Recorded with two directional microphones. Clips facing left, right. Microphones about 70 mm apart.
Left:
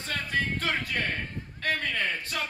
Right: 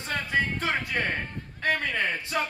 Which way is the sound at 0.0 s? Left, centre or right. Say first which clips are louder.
Right 3 dB; right.